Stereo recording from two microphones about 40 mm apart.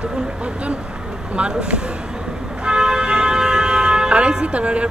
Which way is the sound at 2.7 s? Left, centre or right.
Centre.